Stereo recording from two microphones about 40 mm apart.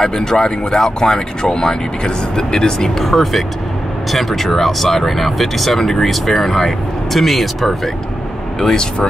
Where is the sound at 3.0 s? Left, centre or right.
Centre.